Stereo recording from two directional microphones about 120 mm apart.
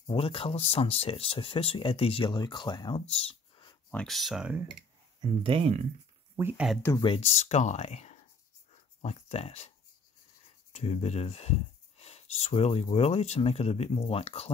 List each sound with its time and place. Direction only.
0.1 s speech: 50° left (ahead or behind)
3.1 s a sound: 50° left (ahead or behind)
3.9 s speech: 5° left (ahead or behind)
5.4 s speech: 50° right (ahead or behind)
6.5 s speech: 5° right (ahead or behind)
7.2 s speech: 65° left (ahead or behind)
10.7 s speech: 65° left (ahead or behind)